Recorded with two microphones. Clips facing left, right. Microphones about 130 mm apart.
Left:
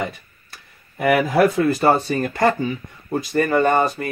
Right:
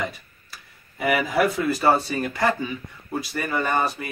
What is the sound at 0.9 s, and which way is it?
Speech, 45° left (ahead or behind).